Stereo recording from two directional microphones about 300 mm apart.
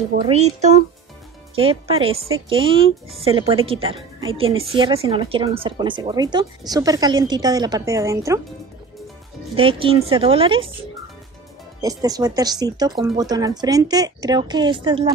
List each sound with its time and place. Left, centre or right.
0.1 s a child's voice: right
9.6 s speech: centre
11.8 s speech: centre